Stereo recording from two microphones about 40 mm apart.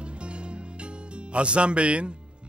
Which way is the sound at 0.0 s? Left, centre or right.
Right.